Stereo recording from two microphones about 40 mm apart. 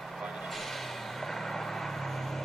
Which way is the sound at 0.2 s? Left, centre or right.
Centre.